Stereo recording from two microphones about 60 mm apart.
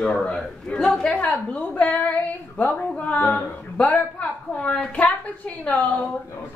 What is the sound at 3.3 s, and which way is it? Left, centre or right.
A woman's voice, left.